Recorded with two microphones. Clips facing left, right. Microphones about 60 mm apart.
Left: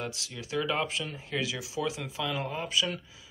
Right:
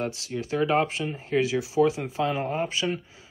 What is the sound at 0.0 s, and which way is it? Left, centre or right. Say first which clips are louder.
Speech: right 8 dB; right.